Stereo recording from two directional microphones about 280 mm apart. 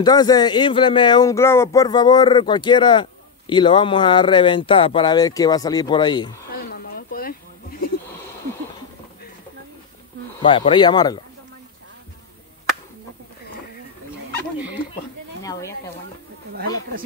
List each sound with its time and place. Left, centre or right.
0.0 s speech: centre
6.5 s a sound: left
10.4 s speech: centre